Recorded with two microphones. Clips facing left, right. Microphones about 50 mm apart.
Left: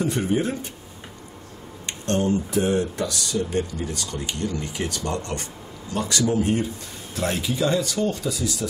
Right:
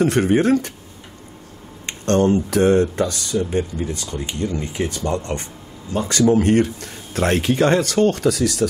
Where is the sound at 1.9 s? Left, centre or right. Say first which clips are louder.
Right 6 dB; right.